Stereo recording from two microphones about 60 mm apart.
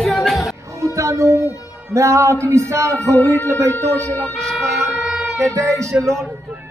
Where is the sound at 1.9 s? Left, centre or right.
Right.